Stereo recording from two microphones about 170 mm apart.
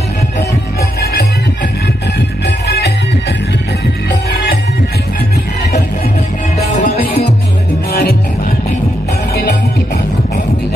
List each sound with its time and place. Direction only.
2.4 s music: 75° left (ahead or behind)
6.6 s music: 55° left (ahead or behind)